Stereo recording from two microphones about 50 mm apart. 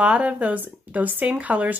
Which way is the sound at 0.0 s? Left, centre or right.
Right.